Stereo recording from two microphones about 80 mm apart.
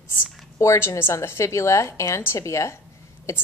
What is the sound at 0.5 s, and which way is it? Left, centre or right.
A woman's voice, left.